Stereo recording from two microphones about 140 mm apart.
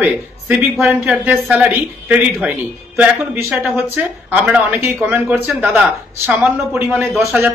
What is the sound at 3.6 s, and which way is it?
A man's voice, 15° right (ahead or behind).